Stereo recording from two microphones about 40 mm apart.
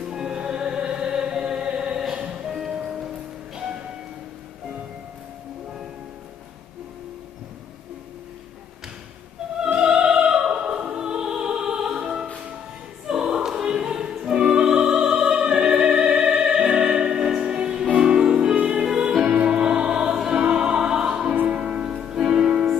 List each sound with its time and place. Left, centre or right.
0.0 s music: centre
9.7 s opera: centre
10.9 s music: centre